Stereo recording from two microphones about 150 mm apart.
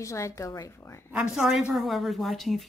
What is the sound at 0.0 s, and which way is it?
A woman's voice, 20° left (ahead or behind).